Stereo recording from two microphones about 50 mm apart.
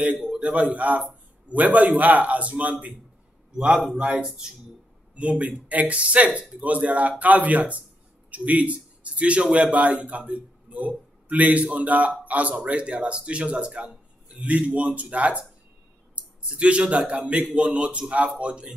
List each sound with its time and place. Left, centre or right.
0.4 s a man's voice: right